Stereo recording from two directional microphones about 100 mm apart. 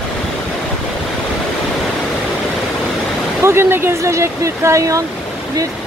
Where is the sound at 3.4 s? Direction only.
25° right (ahead or behind).